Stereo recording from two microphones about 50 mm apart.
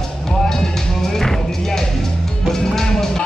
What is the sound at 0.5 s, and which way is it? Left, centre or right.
Music, centre.